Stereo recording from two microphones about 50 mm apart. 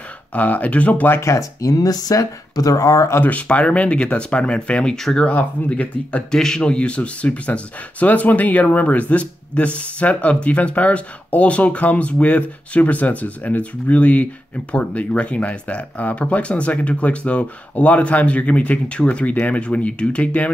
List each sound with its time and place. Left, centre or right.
0.3 s speech: left
1.2 s speech: left
3.2 s speech: left
4.9 s speech: centre
5.2 s speech: left
6.3 s speech: centre